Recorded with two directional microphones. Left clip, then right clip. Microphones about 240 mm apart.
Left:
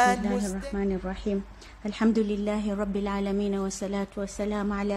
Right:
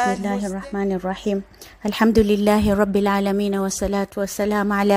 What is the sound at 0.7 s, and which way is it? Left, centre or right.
A woman's voice, right.